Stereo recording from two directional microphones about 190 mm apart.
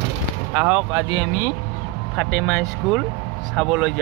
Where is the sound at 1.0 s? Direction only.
40° left (ahead or behind).